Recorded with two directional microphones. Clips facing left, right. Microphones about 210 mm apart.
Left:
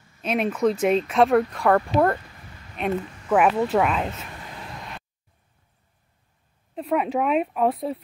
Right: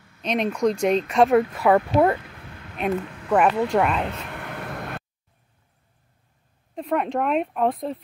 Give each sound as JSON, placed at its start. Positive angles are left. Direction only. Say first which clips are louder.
{"t": 0.2, "sound": "speech", "louder": "even", "side_deg": 5}
{"t": 2.2, "sound": "a sound", "louder": "right 5 dB", "side_deg": -60}
{"t": 3.3, "sound": "speech", "louder": "even", "side_deg": 5}
{"t": 4.1, "sound": "vehicle", "louder": "right 4 dB", "side_deg": -65}
{"t": 6.7, "sound": "speech", "louder": "left 1 dB", "side_deg": 5}